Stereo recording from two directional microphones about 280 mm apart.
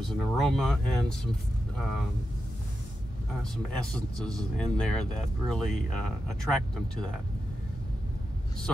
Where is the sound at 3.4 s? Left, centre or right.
Centre.